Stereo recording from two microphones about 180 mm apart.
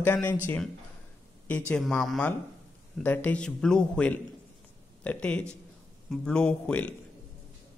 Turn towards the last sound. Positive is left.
turn(degrees=10)  # may be behind; listen again after turning